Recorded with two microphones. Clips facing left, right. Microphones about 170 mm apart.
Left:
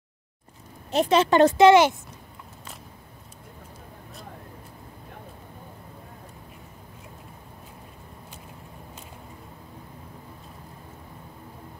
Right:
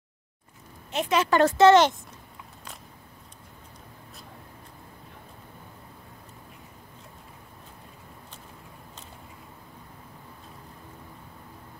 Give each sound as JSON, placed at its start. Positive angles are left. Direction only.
{"t": 0.9, "sound": "a woman's voice", "side_deg": 30}